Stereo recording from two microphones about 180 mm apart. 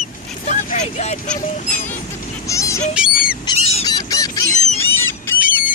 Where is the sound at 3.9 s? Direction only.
20° left (ahead or behind).